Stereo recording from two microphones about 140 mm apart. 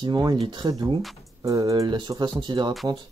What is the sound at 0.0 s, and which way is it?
Speech, 30° right (ahead or behind).